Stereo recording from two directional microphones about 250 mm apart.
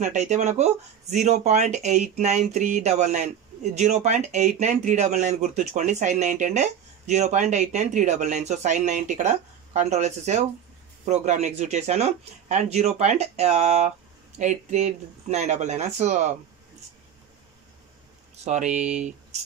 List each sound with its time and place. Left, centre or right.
0.0 s speech: right
18.4 s speech: right